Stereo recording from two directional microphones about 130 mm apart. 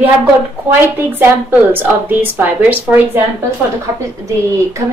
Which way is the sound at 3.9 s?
25° right (ahead or behind).